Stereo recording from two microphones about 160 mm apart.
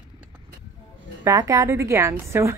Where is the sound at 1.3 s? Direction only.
20° right (ahead or behind).